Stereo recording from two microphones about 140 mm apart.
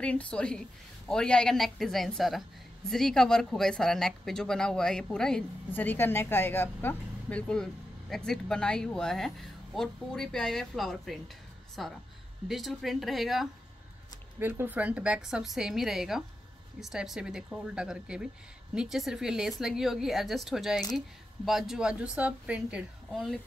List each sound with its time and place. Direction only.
0.0 s speech: 10° left (ahead or behind)
14.4 s speech: 15° right (ahead or behind)
23.1 s speech: centre (ahead or behind)